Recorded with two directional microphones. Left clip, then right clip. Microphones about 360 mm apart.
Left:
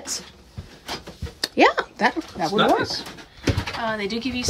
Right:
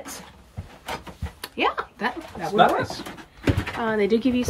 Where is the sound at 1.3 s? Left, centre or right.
Centre.